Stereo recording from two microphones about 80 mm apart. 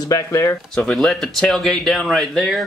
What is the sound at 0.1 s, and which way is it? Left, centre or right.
Speech, left.